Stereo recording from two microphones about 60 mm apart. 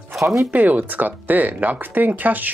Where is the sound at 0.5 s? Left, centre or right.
Right.